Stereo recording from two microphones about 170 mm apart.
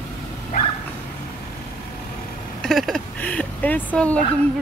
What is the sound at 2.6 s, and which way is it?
Speech, centre (ahead or behind).